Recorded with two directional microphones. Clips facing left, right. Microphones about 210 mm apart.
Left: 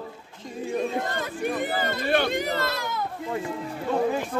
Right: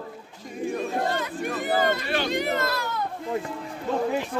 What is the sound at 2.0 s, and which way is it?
Speech, 55° left (ahead or behind).